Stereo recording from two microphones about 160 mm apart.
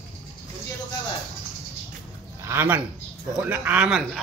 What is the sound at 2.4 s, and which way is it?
Speech, 15° right (ahead or behind).